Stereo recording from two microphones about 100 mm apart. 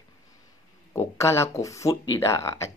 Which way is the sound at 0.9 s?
30° left (ahead or behind).